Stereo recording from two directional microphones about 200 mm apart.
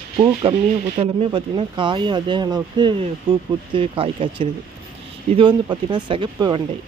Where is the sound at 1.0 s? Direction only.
25° right (ahead or behind).